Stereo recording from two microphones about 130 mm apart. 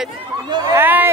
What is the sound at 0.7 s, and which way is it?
Speech, 15° right (ahead or behind).